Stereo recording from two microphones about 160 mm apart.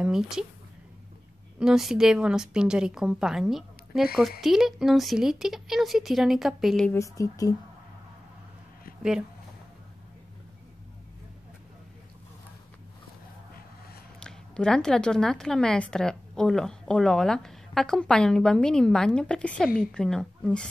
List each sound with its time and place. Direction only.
0.0 s a woman's voice: 5° right (ahead or behind)
1.6 s a woman's voice: 5° right (ahead or behind)
6.9 s speech: 20° left (ahead or behind)
14.2 s a woman's voice: 5° left (ahead or behind)